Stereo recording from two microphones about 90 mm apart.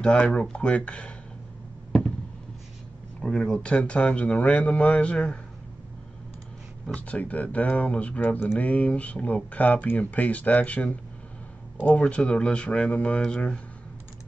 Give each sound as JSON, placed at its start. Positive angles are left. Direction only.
{"t": 0.0, "sound": "speech", "side_deg": 10}
{"t": 3.2, "sound": "speech", "side_deg": 10}
{"t": 7.1, "sound": "speech", "side_deg": 15}